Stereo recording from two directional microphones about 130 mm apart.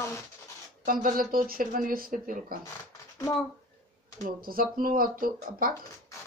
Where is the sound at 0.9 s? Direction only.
90° right.